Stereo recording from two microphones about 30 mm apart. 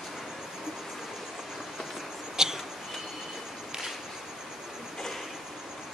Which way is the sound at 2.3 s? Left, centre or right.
Centre.